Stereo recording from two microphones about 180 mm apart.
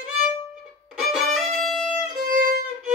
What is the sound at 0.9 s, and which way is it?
Violin, centre (ahead or behind).